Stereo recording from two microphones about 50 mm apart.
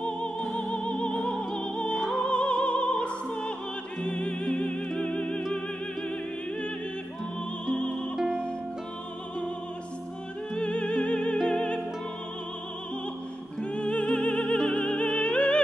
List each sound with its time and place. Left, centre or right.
0.0 s music: centre
7.6 s music: centre
10.5 s music: left
13.6 s music: left